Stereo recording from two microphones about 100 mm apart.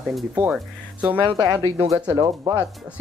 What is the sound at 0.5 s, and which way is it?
Speech, 10° right (ahead or behind).